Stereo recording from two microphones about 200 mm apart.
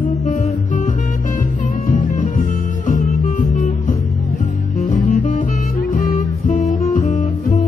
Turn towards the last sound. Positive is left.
turn(degrees=30)  # may be behind; listen again after turning